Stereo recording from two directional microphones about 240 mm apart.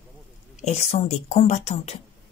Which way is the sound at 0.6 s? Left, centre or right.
Left.